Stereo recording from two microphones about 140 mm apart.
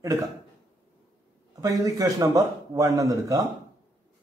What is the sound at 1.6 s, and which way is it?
A man's voice, 25° right (ahead or behind).